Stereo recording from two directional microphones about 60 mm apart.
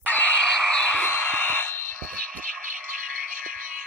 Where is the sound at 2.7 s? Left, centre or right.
Right.